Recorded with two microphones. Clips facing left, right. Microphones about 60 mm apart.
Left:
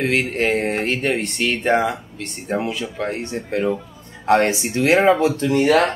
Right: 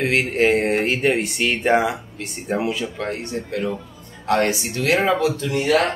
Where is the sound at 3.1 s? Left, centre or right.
Left.